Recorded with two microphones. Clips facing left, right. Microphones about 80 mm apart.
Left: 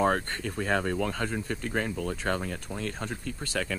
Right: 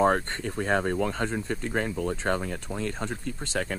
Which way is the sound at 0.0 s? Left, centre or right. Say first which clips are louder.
Right 3 dB; right.